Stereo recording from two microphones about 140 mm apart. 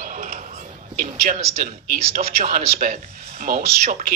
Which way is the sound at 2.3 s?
85° right.